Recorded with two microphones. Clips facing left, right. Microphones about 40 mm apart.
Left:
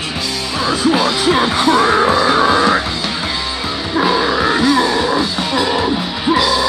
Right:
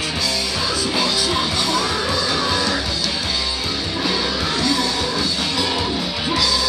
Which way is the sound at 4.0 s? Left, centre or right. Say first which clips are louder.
Left 9 dB; left.